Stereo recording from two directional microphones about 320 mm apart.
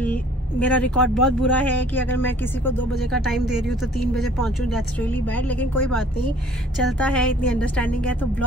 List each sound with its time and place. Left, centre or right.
0.0 s speech: centre